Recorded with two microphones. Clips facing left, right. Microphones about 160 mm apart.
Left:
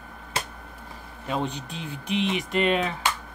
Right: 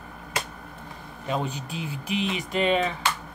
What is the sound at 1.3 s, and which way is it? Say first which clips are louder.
Speech: even; 5° right (ahead or behind).